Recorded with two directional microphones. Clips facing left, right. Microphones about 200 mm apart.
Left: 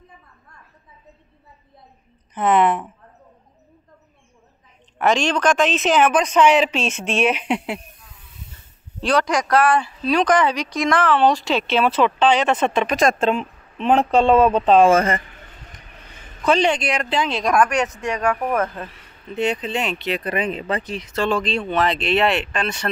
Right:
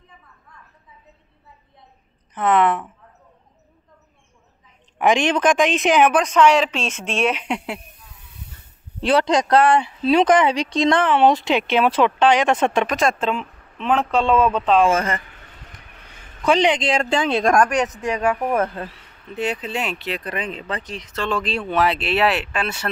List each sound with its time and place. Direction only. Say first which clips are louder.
2.3 s speech: left 1 dB; 15° left (ahead or behind)
4.9 s a woman's voice: right 1 dB; 15° right (ahead or behind)
6.6 s speech: left 2 dB; 5° left (ahead or behind)
9.0 s speech: right 2 dB; 25° right (ahead or behind)
13.2 s speech: left 3 dB; 45° left (ahead or behind)
16.4 s a woman's voice: right 1 dB; 15° right (ahead or behind)
16.8 s speech: right 3 dB; 25° right (ahead or behind)
17.1 s a woman's voice: right 1 dB; 50° right (ahead or behind)
17.5 s a woman's voice: even; centre (ahead or behind)
21.4 s speech: even; 5° right (ahead or behind)